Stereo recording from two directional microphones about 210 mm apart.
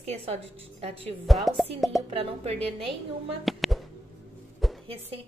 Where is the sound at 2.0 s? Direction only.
30° right (ahead or behind).